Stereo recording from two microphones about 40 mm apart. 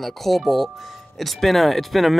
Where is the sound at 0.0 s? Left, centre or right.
Centre.